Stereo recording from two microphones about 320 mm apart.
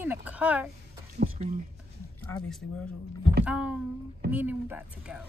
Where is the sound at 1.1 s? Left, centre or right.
Right.